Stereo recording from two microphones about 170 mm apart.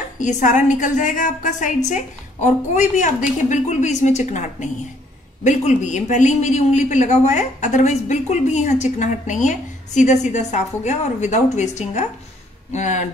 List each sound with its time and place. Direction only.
0.2 s a man's voice: 45° left (ahead or behind)